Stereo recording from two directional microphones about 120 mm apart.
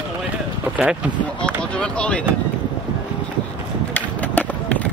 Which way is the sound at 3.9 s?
10° left (ahead or behind).